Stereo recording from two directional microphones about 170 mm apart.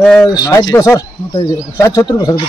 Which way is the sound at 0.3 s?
20° left (ahead or behind).